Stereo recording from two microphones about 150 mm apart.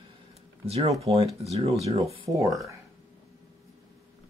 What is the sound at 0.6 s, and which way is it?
Speech, 45° right (ahead or behind).